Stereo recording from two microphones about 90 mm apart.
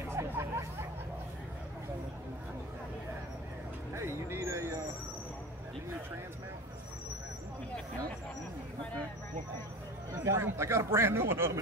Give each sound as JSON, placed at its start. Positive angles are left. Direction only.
{"t": 0.1, "sound": "a sound", "side_deg": -30}
{"t": 3.9, "sound": "vehicle", "side_deg": -30}
{"t": 10.1, "sound": "speech", "side_deg": -30}